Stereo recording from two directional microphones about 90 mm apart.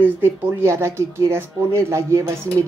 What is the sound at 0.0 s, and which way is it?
Speech, 20° right (ahead or behind).